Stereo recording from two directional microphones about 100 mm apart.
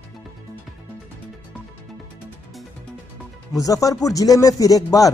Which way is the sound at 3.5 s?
35° left (ahead or behind).